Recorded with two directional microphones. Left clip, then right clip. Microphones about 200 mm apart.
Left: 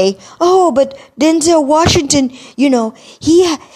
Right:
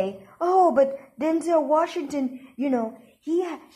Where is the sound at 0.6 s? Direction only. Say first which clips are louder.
Left 7 dB; 65° left (ahead or behind).